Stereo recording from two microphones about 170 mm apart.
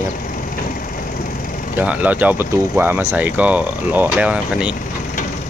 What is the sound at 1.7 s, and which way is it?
Speech, 10° right (ahead or behind).